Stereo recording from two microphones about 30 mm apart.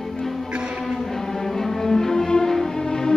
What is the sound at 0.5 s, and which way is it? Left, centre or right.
Music, right.